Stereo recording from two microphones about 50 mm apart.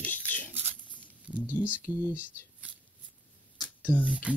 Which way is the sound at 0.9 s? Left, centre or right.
Right.